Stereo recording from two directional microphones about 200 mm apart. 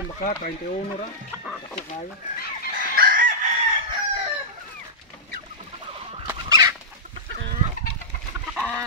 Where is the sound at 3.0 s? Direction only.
45° right (ahead or behind).